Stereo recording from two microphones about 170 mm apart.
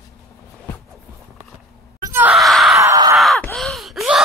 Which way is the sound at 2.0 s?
20° right (ahead or behind).